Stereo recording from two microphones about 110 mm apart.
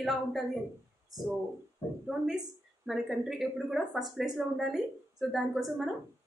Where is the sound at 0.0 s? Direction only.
Centre (ahead or behind).